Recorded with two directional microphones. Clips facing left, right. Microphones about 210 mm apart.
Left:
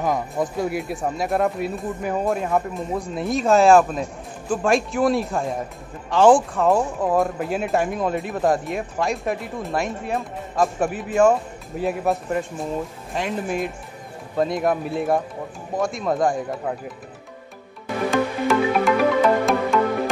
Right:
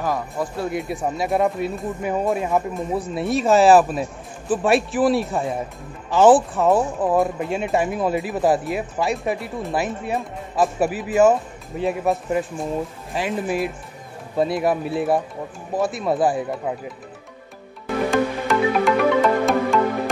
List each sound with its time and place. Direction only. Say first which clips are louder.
0.0 s speech: left 2 dB; 20° left (ahead or behind)
0.7 s speech: right 1 dB; centre (ahead or behind)
18.1 s music: left 2 dB; centre (ahead or behind)